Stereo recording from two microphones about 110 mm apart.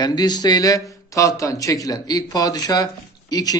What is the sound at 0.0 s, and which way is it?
A man's voice, 40° left (ahead or behind).